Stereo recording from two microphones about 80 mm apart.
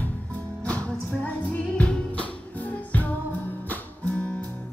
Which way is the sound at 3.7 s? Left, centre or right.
Centre.